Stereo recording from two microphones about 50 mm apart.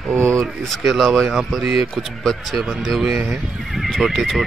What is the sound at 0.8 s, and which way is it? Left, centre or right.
Speech, centre.